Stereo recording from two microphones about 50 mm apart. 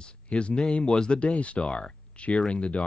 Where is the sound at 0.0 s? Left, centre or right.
Centre.